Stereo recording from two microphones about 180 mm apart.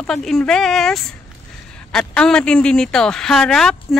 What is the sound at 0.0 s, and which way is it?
A woman's voice, 5° left (ahead or behind).